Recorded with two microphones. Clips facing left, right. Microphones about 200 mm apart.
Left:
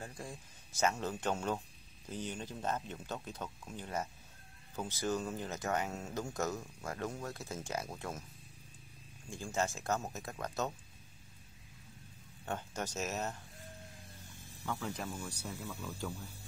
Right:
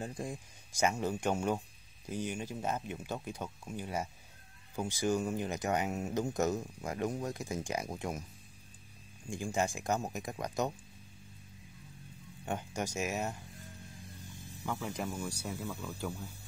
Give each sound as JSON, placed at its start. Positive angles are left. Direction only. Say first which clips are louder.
{"t": 0.0, "sound": "speech", "louder": "right 6 dB", "side_deg": -20}
{"t": 9.3, "sound": "speech", "louder": "right 3 dB", "side_deg": -15}
{"t": 12.4, "sound": "speech", "louder": "right 3 dB", "side_deg": -15}
{"t": 14.6, "sound": "speech", "louder": "right 2 dB", "side_deg": -10}
{"t": 15.8, "sound": "speech", "louder": "right 2 dB", "side_deg": 0}